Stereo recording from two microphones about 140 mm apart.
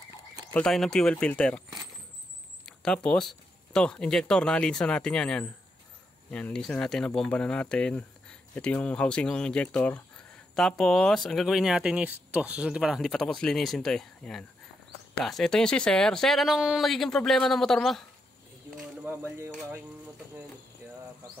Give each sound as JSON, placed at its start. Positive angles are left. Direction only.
{"t": 0.5, "sound": "speech", "side_deg": 5}
{"t": 2.6, "sound": "speech", "side_deg": 5}
{"t": 19.0, "sound": "speech", "side_deg": -20}